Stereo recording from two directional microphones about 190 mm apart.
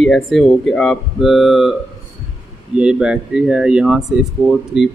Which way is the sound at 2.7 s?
5° right (ahead or behind).